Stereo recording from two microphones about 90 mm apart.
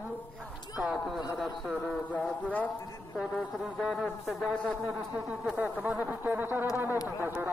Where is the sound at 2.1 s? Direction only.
15° left (ahead or behind).